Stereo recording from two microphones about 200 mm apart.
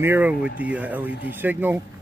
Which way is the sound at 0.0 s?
10° right (ahead or behind).